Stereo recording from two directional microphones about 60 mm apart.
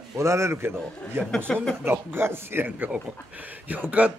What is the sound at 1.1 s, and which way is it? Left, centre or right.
Speech, right.